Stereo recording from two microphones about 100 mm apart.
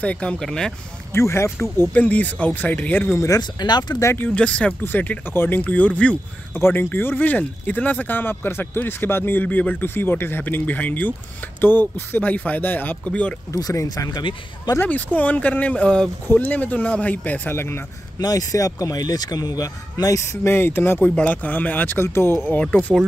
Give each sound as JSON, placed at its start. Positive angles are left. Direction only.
{"t": 0.0, "sound": "speech", "side_deg": 10}
{"t": 1.1, "sound": "speech", "side_deg": 25}
{"t": 2.0, "sound": "speech", "side_deg": 15}
{"t": 3.2, "sound": "speech", "side_deg": 35}
{"t": 4.0, "sound": "speech", "side_deg": 25}
{"t": 4.3, "sound": "speech", "side_deg": 10}
{"t": 13.5, "sound": "speech", "side_deg": 35}
{"t": 14.8, "sound": "speech", "side_deg": 15}
{"t": 18.2, "sound": "speech", "side_deg": 35}
{"t": 20.4, "sound": "speech", "side_deg": 20}